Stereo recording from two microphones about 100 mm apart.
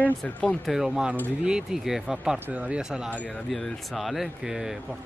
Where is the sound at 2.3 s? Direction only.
15° right (ahead or behind).